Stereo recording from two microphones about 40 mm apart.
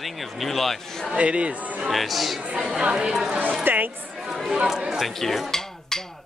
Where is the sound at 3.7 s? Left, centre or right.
Right.